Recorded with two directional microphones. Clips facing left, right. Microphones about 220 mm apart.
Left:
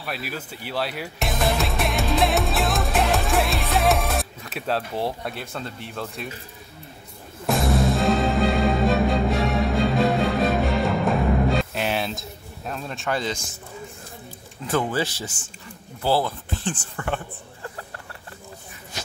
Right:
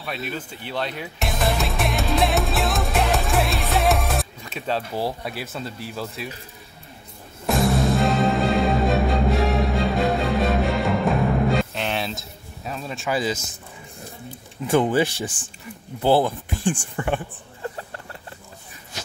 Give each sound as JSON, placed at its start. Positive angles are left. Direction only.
{"t": 0.0, "sound": "speech", "side_deg": 5}
{"t": 7.4, "sound": "music", "side_deg": 0}
{"t": 14.7, "sound": "speech", "side_deg": -15}
{"t": 15.3, "sound": "speech", "side_deg": -30}
{"t": 16.0, "sound": "speech", "side_deg": -20}